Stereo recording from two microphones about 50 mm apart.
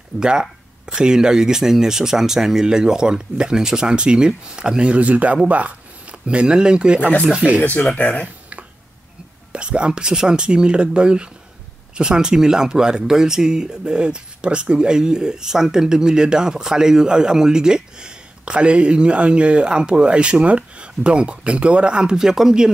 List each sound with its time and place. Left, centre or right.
0.2 s speech: centre
7.6 s speech: left
9.5 s speech: right